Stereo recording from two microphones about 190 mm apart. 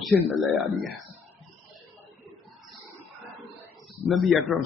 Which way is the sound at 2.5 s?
Centre (ahead or behind).